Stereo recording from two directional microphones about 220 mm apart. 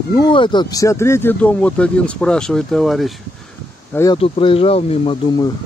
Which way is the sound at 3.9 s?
15° left (ahead or behind).